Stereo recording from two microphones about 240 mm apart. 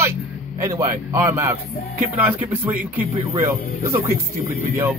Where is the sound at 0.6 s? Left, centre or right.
Centre.